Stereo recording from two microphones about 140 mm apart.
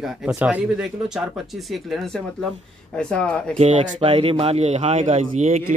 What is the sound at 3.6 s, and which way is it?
Speech, 50° right (ahead or behind).